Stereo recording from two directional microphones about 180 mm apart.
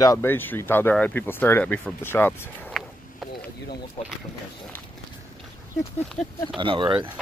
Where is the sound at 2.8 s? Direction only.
Centre (ahead or behind).